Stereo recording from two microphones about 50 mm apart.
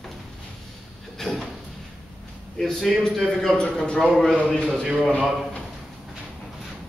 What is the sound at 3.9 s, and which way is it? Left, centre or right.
Speech, centre.